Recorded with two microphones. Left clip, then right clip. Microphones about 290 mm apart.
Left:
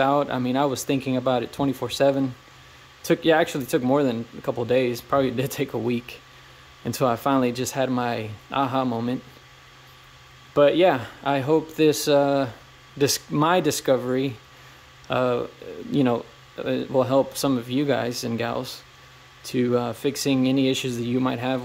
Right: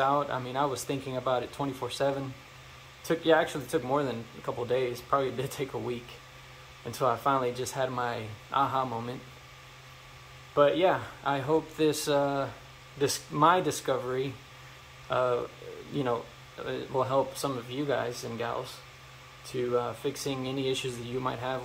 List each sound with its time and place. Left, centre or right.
0.0 s speech: left
10.5 s speech: left
19.5 s speech: left